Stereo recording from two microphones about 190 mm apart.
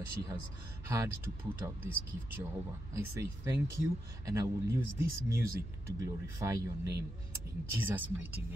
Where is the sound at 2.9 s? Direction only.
15° right (ahead or behind).